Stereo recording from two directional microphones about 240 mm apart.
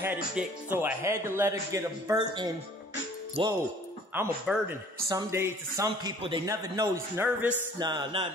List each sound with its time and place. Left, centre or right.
0.0 s speech: centre
4.1 s speech: centre